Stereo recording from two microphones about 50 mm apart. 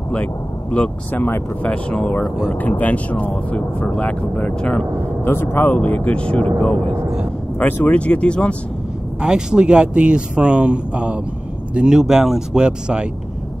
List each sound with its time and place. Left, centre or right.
0.1 s speech: left
1.1 s speech: left
1.7 s speech: left
5.2 s speech: left
5.8 s speech: left
7.5 s speech: left
7.9 s speech: left
9.2 s speech: centre